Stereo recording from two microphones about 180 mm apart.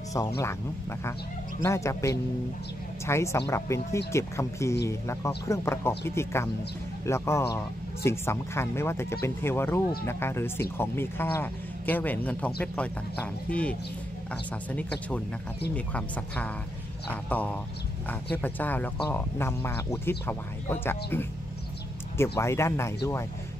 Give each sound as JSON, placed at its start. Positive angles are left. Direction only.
{"t": 1.6, "sound": "a man's voice", "side_deg": 15}
{"t": 22.4, "sound": "a man's voice", "side_deg": 15}